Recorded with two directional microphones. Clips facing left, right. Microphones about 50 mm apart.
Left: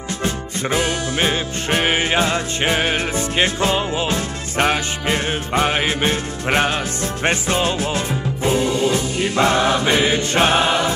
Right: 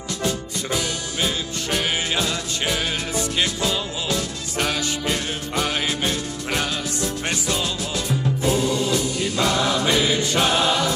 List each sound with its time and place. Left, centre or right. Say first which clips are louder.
0.2 s music: left 2 dB; left